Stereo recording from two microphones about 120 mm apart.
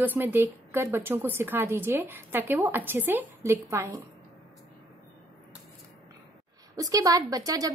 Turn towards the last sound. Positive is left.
turn(degrees=-30)  # may be behind; listen again after turning